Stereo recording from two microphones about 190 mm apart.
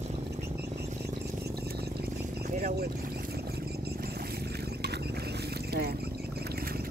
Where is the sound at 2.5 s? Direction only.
45° right (ahead or behind).